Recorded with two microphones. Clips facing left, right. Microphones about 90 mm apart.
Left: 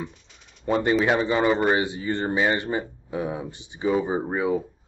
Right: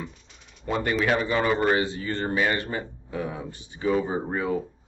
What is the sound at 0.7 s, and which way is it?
A man's voice, 25° left (ahead or behind).